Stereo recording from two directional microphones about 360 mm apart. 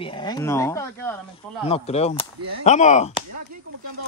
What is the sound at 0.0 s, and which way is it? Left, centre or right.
Speech, centre.